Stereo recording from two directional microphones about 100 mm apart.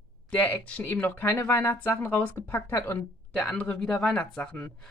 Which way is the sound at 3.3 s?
10° left (ahead or behind).